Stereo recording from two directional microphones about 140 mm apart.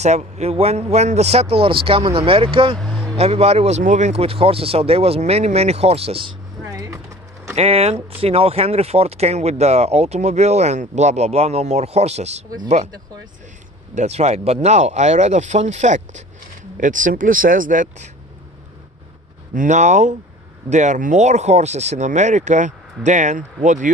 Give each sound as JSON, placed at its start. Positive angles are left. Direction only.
{"t": 0.0, "sound": "speech", "side_deg": -55}
{"t": 2.8, "sound": "a sound", "side_deg": 5}
{"t": 3.2, "sound": "speech", "side_deg": -45}
{"t": 6.6, "sound": "music", "side_deg": -25}
{"t": 7.5, "sound": "speech", "side_deg": -50}
{"t": 13.9, "sound": "speech", "side_deg": -50}
{"t": 19.5, "sound": "speech", "side_deg": -65}